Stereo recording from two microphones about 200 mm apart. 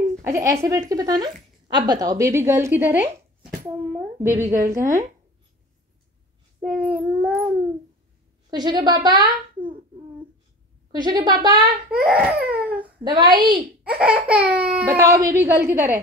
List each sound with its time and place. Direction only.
0.2 s speech: 15° right (ahead or behind)
6.6 s a sound: 5° right (ahead or behind)
8.5 s a woman's voice: 20° right (ahead or behind)
10.9 s a woman's voice: 20° right (ahead or behind)
12.0 s speech: 5° right (ahead or behind)
12.4 s baby cry: 5° right (ahead or behind)
13.0 s a woman's voice: 20° right (ahead or behind)
13.8 s speech: 5° right (ahead or behind)